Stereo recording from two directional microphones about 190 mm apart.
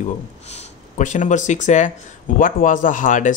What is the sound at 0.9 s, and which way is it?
Speech, 40° left (ahead or behind).